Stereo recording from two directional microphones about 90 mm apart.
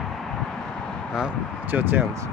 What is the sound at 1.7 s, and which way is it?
Speech, 25° right (ahead or behind).